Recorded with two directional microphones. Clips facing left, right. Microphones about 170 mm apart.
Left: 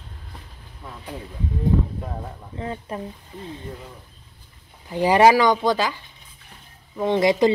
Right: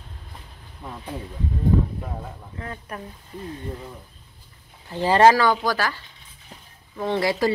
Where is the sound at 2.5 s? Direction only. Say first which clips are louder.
Left 6 dB; 25° left (ahead or behind).